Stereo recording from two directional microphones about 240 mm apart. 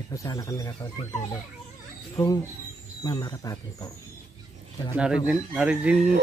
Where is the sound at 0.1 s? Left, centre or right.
Centre.